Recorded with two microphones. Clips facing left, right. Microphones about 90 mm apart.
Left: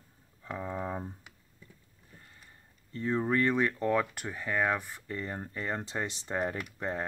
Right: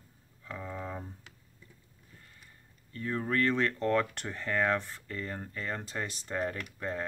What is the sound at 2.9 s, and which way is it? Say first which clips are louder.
Speech: left 3 dB; 20° left (ahead or behind).